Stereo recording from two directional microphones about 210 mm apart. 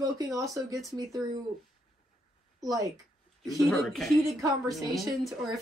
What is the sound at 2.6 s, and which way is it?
Speech, 15° right (ahead or behind).